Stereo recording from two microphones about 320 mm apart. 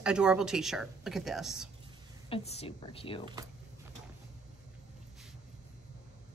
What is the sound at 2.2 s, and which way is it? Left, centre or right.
A woman's voice, centre.